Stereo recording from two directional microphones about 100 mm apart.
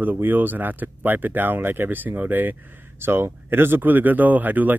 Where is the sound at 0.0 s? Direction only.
20° right (ahead or behind).